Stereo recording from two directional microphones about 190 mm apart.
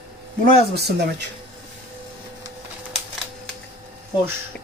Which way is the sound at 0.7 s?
60° right (ahead or behind).